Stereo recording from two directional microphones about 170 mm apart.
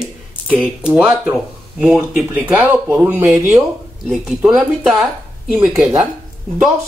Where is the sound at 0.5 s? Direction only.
5° right (ahead or behind).